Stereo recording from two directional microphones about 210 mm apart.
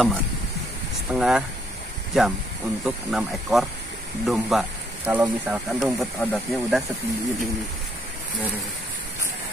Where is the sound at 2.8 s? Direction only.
5° right (ahead or behind).